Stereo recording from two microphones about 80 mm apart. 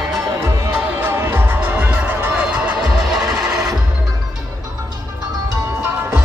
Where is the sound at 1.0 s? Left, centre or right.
Right.